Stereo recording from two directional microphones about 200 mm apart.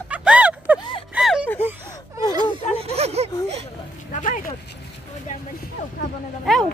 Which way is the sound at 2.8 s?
30° right (ahead or behind).